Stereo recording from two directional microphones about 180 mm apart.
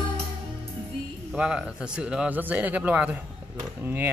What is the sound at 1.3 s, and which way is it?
Speech, 5° right (ahead or behind).